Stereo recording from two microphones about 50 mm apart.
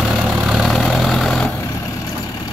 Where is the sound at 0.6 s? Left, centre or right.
Centre.